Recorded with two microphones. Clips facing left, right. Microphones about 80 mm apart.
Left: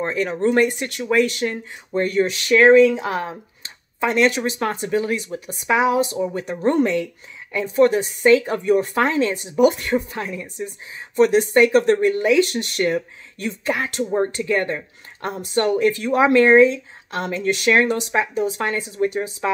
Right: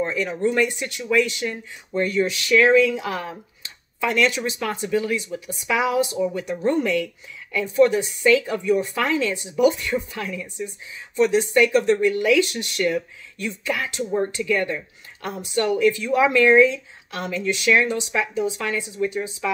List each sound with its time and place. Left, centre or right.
0.0 s speech: left
17.4 s speech: left